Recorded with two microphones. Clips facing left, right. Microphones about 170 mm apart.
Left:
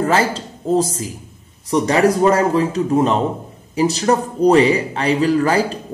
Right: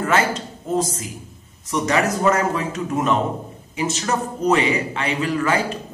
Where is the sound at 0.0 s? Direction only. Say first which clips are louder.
Left 3 dB; 30° left (ahead or behind).